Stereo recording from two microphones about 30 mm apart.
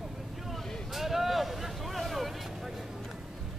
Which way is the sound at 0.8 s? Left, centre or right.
Centre.